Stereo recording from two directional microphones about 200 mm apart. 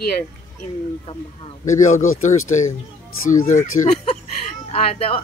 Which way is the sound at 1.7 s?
40° left (ahead or behind).